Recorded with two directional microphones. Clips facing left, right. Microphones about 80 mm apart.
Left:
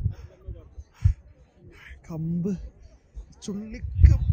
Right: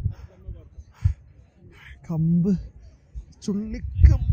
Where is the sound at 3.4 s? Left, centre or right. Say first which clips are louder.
Right 6 dB; centre.